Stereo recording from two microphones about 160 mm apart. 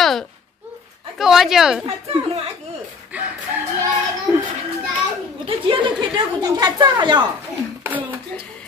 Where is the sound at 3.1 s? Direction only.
10° right (ahead or behind).